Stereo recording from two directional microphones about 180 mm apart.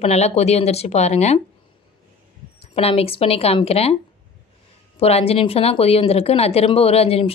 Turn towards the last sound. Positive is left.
turn(degrees=35)  # may be behind; listen again after turning